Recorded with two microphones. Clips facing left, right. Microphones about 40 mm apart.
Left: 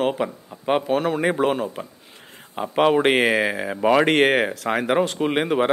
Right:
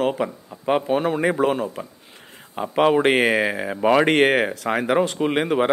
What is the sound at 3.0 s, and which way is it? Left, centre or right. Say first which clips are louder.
Speech: even; left.